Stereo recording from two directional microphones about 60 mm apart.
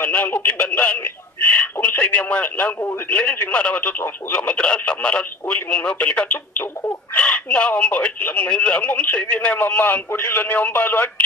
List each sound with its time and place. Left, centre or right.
0.0 s speech: left
1.0 s speech: left
8.5 s speech: left